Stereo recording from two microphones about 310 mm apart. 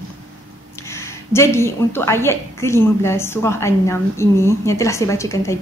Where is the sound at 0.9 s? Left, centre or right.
Centre.